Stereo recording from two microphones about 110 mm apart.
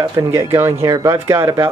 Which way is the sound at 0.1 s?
25° right (ahead or behind).